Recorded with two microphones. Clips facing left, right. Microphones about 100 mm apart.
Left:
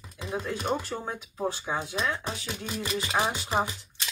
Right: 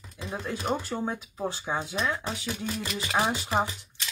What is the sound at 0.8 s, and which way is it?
Speech, 10° right (ahead or behind).